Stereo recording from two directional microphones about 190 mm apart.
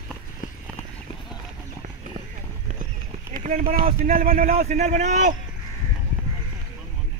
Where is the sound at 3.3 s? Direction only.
40° right (ahead or behind).